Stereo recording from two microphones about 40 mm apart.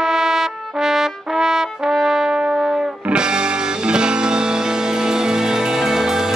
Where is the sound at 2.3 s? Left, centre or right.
Right.